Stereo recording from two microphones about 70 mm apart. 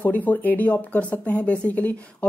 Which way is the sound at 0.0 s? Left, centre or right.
Left.